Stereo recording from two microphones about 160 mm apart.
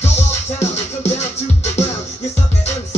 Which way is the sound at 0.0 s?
40° left (ahead or behind).